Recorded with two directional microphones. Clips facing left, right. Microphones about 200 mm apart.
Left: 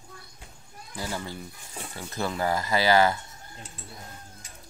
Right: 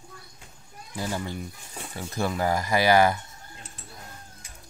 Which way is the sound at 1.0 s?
15° right (ahead or behind).